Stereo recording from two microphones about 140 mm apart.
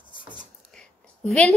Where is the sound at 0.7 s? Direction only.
5° left (ahead or behind).